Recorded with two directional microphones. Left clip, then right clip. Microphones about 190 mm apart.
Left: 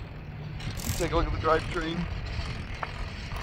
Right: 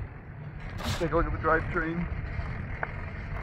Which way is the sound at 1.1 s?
10° right (ahead or behind).